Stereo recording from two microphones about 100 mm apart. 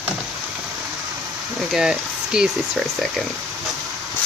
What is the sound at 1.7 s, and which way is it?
Speech, 5° right (ahead or behind).